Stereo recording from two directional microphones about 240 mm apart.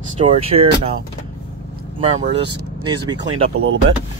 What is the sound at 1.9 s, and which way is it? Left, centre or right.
Speech, right.